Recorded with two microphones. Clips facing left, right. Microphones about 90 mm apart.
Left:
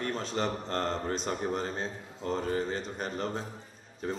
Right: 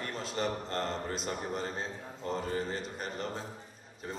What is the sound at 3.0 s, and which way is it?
Speech, 35° left (ahead or behind).